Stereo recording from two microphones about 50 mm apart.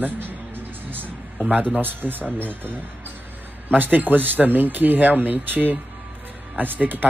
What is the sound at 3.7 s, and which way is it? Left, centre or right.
Speech, right.